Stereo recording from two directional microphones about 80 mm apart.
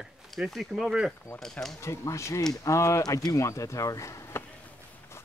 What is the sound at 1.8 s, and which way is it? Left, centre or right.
Speech, left.